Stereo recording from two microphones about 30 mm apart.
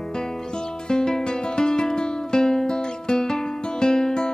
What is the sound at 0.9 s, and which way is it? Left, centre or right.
Music, left.